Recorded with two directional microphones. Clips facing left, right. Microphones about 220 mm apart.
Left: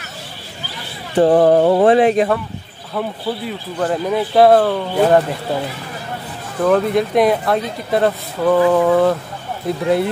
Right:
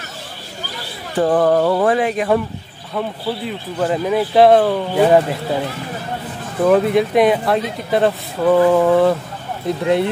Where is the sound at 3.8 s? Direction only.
5° right (ahead or behind).